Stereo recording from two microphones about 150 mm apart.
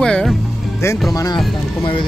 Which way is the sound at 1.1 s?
25° left (ahead or behind).